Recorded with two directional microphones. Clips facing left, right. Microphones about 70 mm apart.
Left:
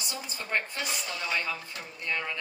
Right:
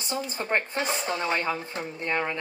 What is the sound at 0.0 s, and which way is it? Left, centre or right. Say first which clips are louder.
A woman's voice: right 7 dB; right.